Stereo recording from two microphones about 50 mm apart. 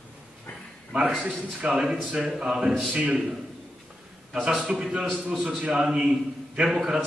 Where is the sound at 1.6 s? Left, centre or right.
Centre.